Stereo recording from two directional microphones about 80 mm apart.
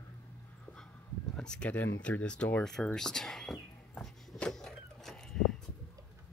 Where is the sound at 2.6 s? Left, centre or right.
Centre.